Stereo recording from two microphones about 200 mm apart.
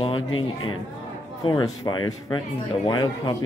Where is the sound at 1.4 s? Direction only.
20° left (ahead or behind).